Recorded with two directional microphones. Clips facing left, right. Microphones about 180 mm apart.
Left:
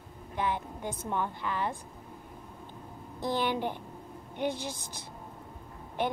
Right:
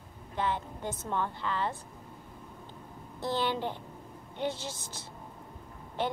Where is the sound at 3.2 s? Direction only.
15° left (ahead or behind).